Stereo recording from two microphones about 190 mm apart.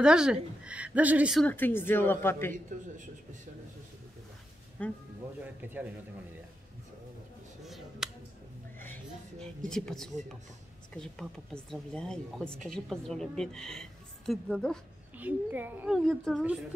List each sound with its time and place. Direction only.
0.0 s a woman's voice: 5° right (ahead or behind)
1.5 s speech: 10° left (ahead or behind)
2.7 s a man's voice: 45° right (ahead or behind)
4.8 s speech: 5° left (ahead or behind)
5.4 s a woman's voice: 10° right (ahead or behind)
7.6 s finger snapping: centre (ahead or behind)
9.4 s a woman's voice: 5° left (ahead or behind)
15.1 s a woman's voice: 10° right (ahead or behind)